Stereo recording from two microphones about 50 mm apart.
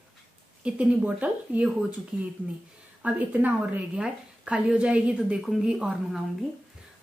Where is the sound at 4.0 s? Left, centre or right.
Right.